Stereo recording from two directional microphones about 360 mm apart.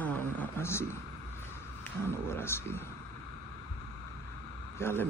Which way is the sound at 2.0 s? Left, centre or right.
Centre.